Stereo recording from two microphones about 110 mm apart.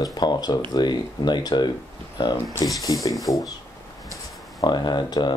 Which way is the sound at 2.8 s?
35° left (ahead or behind).